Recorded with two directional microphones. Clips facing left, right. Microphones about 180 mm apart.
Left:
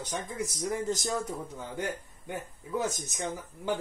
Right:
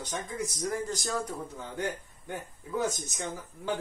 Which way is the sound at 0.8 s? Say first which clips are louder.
Left 2 dB; 20° left (ahead or behind).